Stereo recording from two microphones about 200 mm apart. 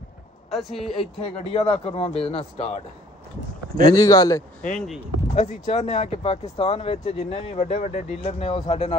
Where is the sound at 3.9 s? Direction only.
15° left (ahead or behind).